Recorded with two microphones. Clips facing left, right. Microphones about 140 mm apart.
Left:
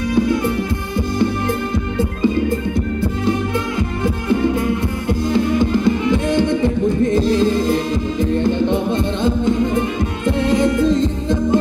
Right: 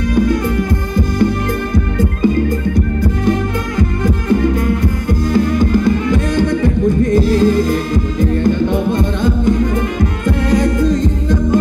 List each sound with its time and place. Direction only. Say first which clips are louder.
2.0 s music: right 2 dB; 25° left (ahead or behind)
5.3 s music: right 3 dB; 20° left (ahead or behind)